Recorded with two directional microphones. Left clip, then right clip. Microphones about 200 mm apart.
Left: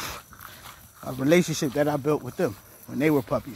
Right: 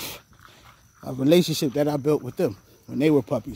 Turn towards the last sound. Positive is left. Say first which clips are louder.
# right 2 dB
turn(degrees=-30)  # may be behind; listen again after turning